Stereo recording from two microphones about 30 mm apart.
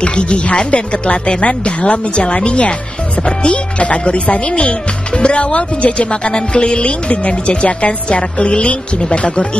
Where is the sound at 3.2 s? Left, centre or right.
Left.